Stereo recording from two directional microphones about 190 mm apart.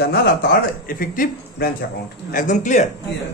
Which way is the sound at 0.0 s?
55° left (ahead or behind).